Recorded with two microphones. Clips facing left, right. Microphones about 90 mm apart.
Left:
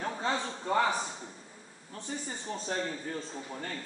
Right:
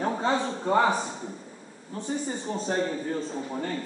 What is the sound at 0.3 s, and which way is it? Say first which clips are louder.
Speech: right 5 dB; 30° right (ahead or behind).